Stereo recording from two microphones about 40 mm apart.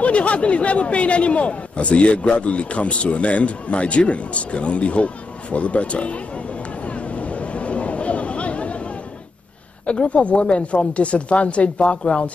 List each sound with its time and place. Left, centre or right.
0.0 s a man's voice: left
9.8 s speech: left